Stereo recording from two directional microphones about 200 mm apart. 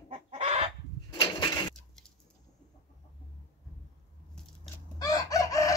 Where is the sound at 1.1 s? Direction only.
25° left (ahead or behind).